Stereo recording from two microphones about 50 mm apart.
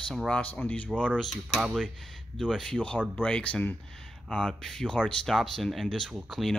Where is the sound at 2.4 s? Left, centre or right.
Centre.